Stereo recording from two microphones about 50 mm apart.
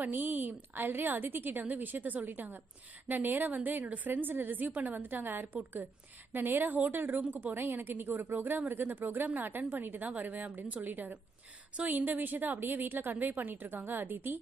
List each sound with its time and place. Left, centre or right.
0.0 s a woman's voice: right